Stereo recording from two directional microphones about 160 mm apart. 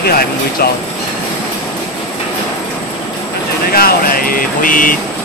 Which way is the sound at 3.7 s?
70° left (ahead or behind).